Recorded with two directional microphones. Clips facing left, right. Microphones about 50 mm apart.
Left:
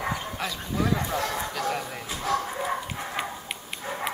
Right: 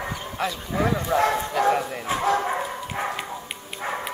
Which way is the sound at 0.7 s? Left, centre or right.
Right.